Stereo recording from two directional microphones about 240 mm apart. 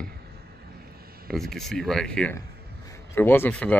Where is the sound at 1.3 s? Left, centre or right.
Centre.